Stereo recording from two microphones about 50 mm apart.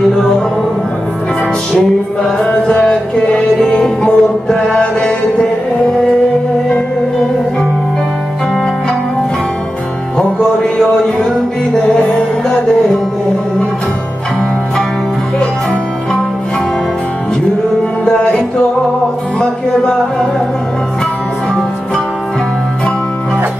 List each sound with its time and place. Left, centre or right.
2.2 s music: centre
11.7 s music: centre
18.0 s music: centre